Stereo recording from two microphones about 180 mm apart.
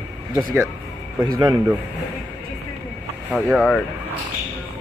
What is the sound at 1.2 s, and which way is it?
Speech, 20° right (ahead or behind).